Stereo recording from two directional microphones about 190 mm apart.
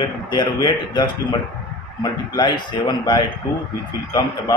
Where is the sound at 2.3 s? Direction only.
20° left (ahead or behind).